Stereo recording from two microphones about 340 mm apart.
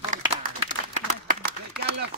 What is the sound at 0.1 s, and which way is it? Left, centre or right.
Applause, centre.